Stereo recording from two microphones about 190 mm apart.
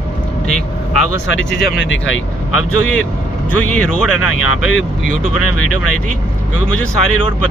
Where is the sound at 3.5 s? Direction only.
5° left (ahead or behind).